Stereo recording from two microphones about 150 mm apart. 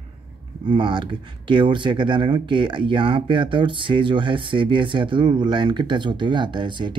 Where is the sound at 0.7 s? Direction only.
30° right (ahead or behind).